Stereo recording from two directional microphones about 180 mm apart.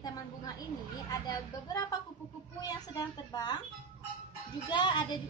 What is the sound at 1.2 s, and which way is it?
Speech, 20° left (ahead or behind).